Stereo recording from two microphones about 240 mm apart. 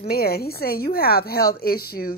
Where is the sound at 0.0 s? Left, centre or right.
Left.